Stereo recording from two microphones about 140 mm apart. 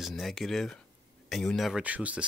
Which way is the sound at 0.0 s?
Centre (ahead or behind).